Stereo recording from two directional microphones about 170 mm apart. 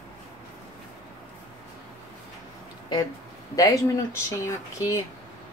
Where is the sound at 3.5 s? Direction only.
20° left (ahead or behind).